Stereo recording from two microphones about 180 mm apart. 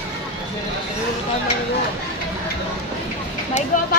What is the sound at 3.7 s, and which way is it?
Speech, 50° left (ahead or behind).